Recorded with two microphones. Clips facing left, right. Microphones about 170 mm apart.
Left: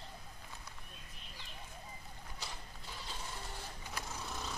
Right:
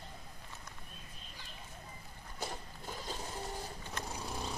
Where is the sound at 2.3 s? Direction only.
50° right (ahead or behind).